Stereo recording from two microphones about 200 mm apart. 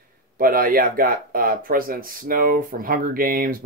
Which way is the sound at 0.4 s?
45° right (ahead or behind).